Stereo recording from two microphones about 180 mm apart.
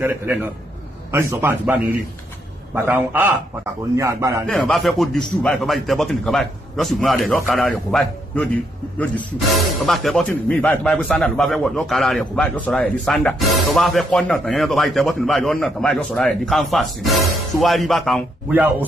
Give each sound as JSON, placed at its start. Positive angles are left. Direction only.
{"t": 0.0, "sound": "a man's voice", "side_deg": -10}
{"t": 4.5, "sound": "a man's voice", "side_deg": 0}
{"t": 18.5, "sound": "a man's voice", "side_deg": -10}